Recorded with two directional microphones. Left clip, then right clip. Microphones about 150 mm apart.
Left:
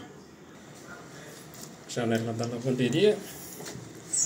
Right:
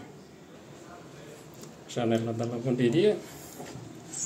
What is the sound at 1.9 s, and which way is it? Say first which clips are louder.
A man's voice: right 1 dB; 15° right (ahead or behind).